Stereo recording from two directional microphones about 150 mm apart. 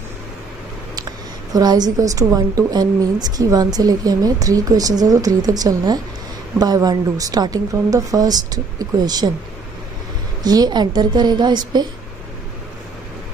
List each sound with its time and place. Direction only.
1.5 s a woman's voice: 25° right (ahead or behind)
10.4 s a woman's voice: 25° right (ahead or behind)